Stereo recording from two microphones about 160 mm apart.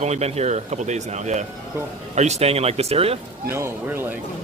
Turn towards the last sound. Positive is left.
turn(degrees=-15)  # may be behind; listen again after turning